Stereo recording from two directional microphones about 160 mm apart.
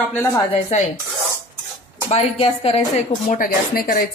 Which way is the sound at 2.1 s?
40° left (ahead or behind).